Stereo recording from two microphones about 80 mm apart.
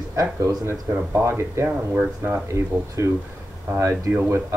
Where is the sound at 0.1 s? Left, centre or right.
Right.